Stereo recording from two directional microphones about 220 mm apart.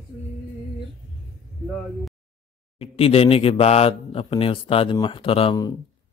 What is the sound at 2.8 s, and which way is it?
Speech, 25° left (ahead or behind).